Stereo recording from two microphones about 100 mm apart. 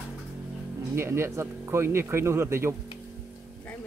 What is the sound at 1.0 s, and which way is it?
A man's voice, 25° right (ahead or behind).